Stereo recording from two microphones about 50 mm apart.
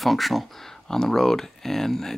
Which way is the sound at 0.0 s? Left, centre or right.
Centre.